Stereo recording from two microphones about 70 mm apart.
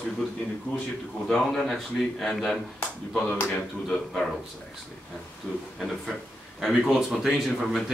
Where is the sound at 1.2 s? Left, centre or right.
Centre.